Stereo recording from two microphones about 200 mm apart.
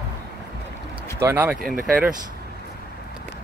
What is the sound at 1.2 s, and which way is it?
Speech, 10° right (ahead or behind).